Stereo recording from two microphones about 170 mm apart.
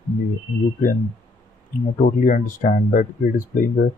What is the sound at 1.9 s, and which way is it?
Speech, 50° left (ahead or behind).